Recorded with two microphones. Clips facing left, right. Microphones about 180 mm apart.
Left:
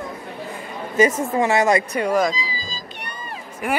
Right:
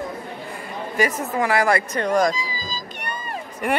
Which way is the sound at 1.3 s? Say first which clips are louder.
Left 1 dB; 25° left (ahead or behind).